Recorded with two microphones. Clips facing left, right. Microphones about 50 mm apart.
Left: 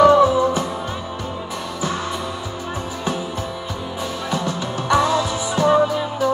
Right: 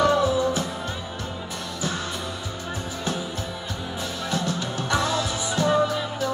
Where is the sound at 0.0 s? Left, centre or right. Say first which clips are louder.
Left 8 dB; left.